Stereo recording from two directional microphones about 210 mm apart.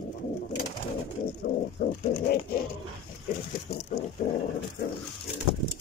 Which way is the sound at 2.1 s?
45° left (ahead or behind).